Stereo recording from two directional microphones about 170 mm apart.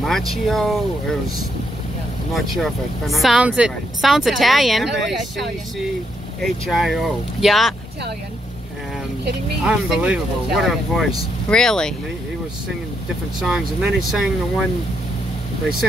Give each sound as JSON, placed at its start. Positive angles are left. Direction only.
{"t": 0.0, "sound": "speech", "side_deg": 0}
{"t": 2.3, "sound": "speech", "side_deg": 0}
{"t": 9.7, "sound": "speech", "side_deg": -5}
{"t": 13.4, "sound": "speech", "side_deg": -5}